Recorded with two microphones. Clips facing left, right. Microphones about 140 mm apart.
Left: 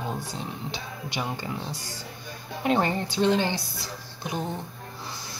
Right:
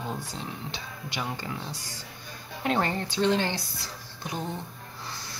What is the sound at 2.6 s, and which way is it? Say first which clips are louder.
Speech: left 3 dB; 15° left (ahead or behind).